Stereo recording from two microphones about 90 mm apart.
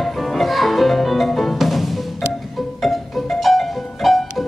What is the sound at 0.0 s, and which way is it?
Music, centre (ahead or behind).